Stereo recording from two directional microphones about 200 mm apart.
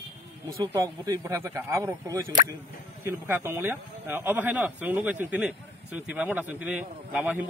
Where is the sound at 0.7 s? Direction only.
20° right (ahead or behind).